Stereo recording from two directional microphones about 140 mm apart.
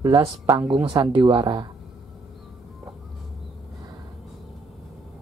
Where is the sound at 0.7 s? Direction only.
40° right (ahead or behind).